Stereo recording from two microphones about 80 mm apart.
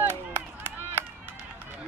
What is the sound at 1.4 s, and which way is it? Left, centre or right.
Run, centre.